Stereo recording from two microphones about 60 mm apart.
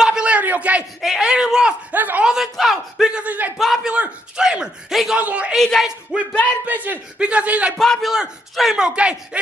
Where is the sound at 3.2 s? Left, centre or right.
Right.